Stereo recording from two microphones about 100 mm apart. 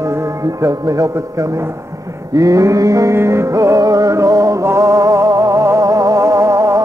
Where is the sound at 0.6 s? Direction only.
35° right (ahead or behind).